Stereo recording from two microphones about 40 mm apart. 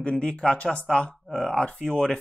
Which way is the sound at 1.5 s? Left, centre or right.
Left.